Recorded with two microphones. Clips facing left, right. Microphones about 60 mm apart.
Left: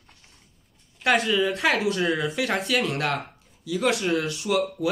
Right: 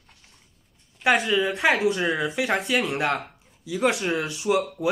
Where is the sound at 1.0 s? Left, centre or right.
Centre.